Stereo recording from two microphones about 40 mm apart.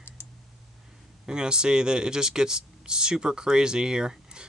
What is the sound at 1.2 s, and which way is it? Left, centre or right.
Speech, centre.